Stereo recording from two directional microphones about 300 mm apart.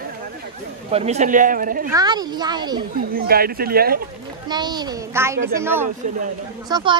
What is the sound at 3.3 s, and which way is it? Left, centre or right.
Speech, right.